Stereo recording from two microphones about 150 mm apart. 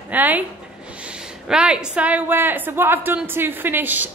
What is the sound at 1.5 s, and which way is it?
A woman's voice, 5° right (ahead or behind).